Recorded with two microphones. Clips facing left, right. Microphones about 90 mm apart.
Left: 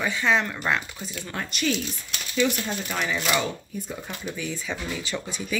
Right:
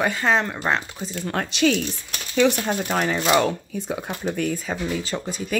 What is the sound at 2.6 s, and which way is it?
Speech, 45° right (ahead or behind).